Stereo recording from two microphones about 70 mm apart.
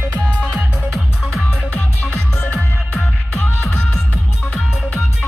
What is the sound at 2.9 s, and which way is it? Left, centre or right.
Music, centre.